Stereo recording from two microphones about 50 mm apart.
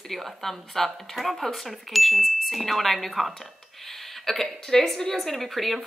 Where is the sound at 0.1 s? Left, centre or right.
Centre.